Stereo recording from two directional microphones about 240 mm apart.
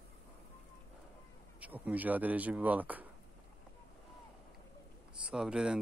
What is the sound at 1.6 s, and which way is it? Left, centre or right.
Speech, centre.